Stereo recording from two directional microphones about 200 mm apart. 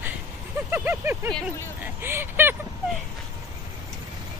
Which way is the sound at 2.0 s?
10° right (ahead or behind).